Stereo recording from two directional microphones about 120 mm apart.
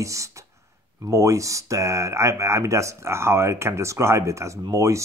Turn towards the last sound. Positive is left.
turn(degrees=-25)  # may be behind; listen again after turning